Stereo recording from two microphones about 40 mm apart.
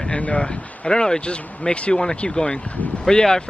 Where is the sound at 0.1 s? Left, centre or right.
Left.